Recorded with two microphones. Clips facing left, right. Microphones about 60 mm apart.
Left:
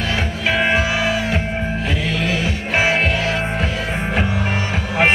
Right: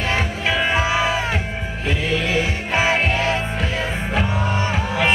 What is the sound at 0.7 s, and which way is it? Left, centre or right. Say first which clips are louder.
Music: even; right.